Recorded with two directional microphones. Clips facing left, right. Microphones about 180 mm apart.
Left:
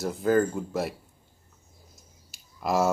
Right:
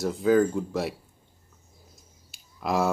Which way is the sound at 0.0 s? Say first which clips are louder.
Right 2 dB; centre (ahead or behind).